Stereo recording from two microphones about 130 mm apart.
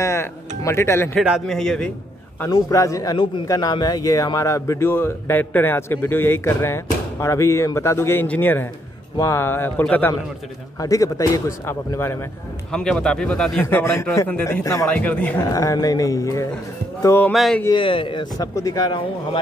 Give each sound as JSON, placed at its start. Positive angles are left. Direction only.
{"t": 0.0, "sound": "speech", "side_deg": 20}
{"t": 1.2, "sound": "a man's voice", "side_deg": -5}
{"t": 1.6, "sound": "a man's voice", "side_deg": 5}
{"t": 2.4, "sound": "a man's voice", "side_deg": 25}
{"t": 10.8, "sound": "a man's voice", "side_deg": 25}
{"t": 12.7, "sound": "speech", "side_deg": 5}
{"t": 13.6, "sound": "a man's voice", "side_deg": 15}
{"t": 14.9, "sound": "speech", "side_deg": 10}
{"t": 15.4, "sound": "a man's voice", "side_deg": 25}
{"t": 17.3, "sound": "a man's voice", "side_deg": 0}
{"t": 17.7, "sound": "speech", "side_deg": 40}
{"t": 18.5, "sound": "speech", "side_deg": 25}